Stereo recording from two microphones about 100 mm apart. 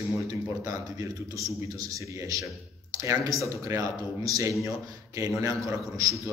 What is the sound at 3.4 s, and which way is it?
Speech, 30° right (ahead or behind).